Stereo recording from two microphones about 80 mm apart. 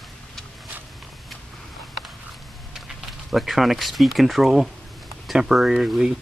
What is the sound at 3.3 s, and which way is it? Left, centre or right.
Speech, centre.